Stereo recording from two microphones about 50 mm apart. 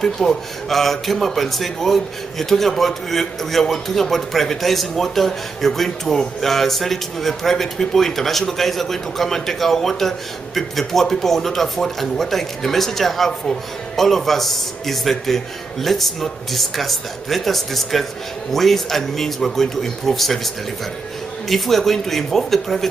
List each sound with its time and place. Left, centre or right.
0.0 s speech: centre
21.5 s speech: centre